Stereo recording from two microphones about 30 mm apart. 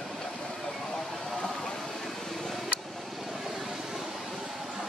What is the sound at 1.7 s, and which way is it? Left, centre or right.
Vehicle, centre.